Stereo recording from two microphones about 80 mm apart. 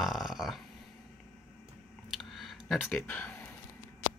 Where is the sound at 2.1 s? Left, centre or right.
Centre.